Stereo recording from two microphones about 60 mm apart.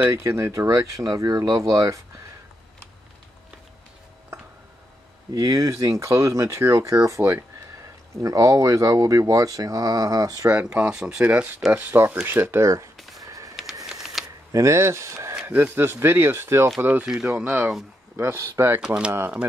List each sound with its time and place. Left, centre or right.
0.2 s speech: right
5.3 s speech: right
8.2 s speech: right
10.7 s speech: centre
11.2 s speech: right
12.6 s speech: right
12.9 s a sound: centre
13.2 s a sound: right
14.2 s a sound: centre
14.5 s speech: right
15.4 s speech: right
17.0 s speech: centre
18.1 s speech: right
18.9 s speech: centre